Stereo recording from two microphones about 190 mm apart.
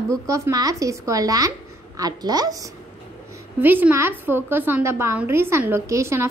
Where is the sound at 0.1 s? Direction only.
15° right (ahead or behind).